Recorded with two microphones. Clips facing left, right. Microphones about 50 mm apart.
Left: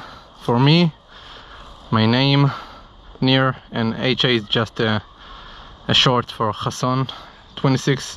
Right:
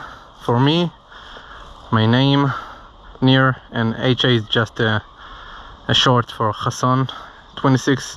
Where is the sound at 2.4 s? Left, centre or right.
Right.